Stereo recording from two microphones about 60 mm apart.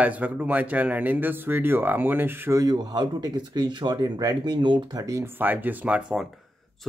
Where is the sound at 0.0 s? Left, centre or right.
Right.